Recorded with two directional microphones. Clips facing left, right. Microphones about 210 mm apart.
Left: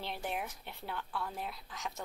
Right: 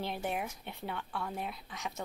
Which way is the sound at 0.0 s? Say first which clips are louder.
Right 3 dB; centre (ahead or behind).